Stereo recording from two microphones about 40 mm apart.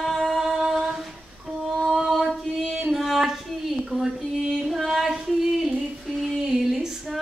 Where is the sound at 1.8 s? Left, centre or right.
Centre.